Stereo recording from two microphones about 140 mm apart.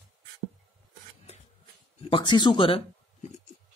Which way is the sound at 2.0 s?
35° left (ahead or behind).